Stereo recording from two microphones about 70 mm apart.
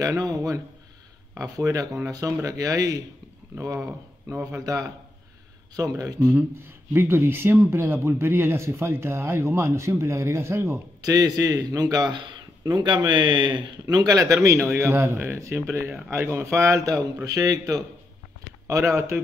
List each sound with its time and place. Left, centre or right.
0.2 s a man's voice: right
4.5 s speech: right
6.5 s speech: right
11.0 s a man's voice: right
12.7 s speech: right
13.9 s a man's voice: right
17.0 s a man's voice: right